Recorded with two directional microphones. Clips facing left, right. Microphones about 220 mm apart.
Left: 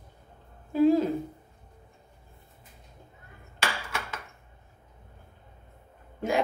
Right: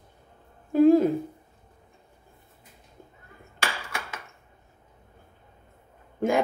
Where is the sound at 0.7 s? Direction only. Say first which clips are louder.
Right 4 dB; 50° right (ahead or behind).